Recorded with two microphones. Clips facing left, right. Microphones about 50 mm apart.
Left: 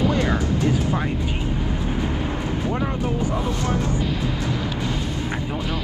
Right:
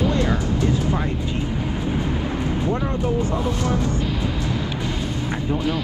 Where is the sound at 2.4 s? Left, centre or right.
Right.